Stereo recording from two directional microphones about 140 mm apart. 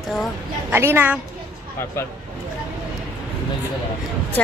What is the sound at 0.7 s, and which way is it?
Speech, 15° right (ahead or behind).